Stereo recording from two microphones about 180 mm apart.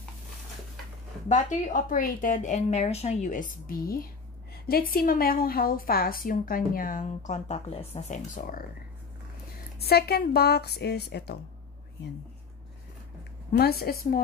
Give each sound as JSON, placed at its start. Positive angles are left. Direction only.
{"t": 1.3, "sound": "a woman's voice", "side_deg": 45}
{"t": 9.8, "sound": "a woman's voice", "side_deg": 60}
{"t": 13.5, "sound": "a woman's voice", "side_deg": 60}